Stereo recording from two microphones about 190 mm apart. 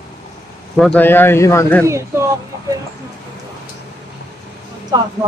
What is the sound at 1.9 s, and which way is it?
Speech, 15° right (ahead or behind).